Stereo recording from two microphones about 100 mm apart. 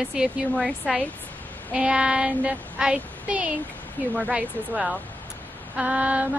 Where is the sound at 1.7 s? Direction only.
15° right (ahead or behind).